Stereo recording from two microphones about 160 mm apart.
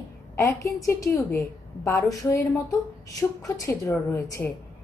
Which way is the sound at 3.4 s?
20° left (ahead or behind).